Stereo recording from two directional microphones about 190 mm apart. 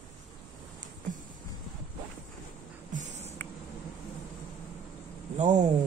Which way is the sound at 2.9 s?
40° right (ahead or behind).